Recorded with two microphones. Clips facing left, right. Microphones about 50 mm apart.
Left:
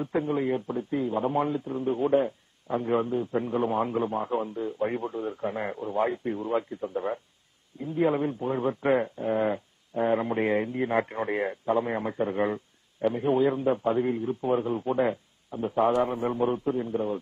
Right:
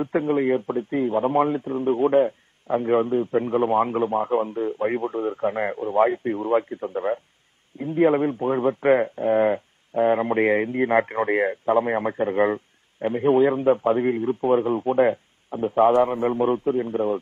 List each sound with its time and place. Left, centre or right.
0.0 s speech: right